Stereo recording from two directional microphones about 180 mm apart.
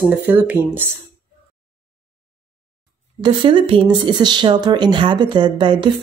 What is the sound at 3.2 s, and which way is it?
Speech, 30° right (ahead or behind).